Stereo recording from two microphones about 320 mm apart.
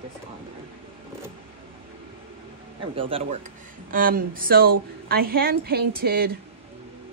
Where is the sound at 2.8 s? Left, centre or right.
Centre.